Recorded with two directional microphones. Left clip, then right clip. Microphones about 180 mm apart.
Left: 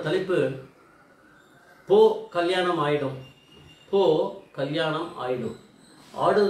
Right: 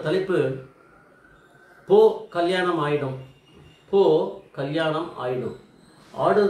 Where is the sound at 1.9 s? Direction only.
15° right (ahead or behind).